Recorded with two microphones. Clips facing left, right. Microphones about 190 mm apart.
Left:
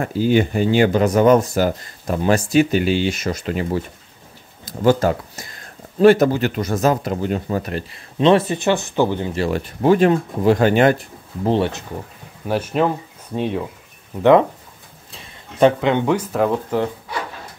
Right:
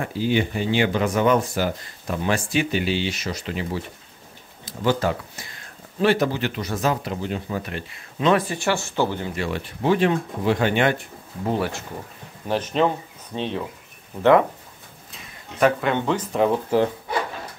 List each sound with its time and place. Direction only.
0.0 s speech: 45° left (ahead or behind); by 9.3 s 15° left (ahead or behind)
9.3 s speech: 40° left (ahead or behind)
11.4 s speech: 25° left (ahead or behind)
12.4 s speech: 10° left (ahead or behind)
15.1 s speech: 25° left (ahead or behind)
16.3 s speech: centre (ahead or behind)